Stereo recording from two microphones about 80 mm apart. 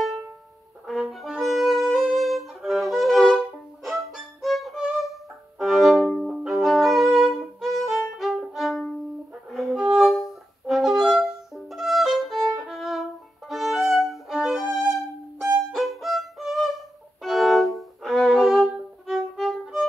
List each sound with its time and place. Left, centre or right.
0.8 s music: centre
5.6 s violin: centre
9.5 s music: centre
12.7 s violin: centre
15.7 s music: centre
17.2 s violin: centre